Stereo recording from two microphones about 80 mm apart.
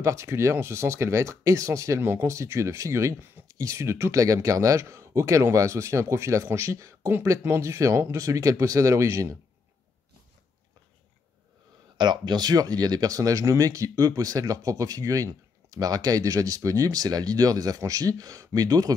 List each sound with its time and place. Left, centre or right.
0.0 s speech: right
12.0 s speech: right